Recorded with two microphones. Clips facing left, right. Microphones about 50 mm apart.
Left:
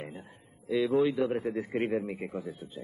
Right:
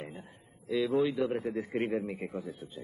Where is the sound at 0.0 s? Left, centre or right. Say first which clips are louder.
Left 1 dB; centre.